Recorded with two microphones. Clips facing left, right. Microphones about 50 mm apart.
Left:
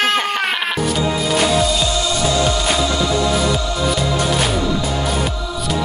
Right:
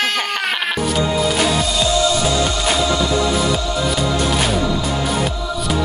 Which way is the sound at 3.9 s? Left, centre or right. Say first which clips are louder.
Left 1 dB; centre.